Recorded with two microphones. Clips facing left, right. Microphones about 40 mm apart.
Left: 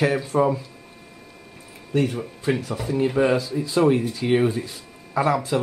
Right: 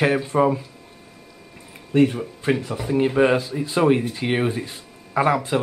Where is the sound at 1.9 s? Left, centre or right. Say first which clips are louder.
Right 5 dB; right.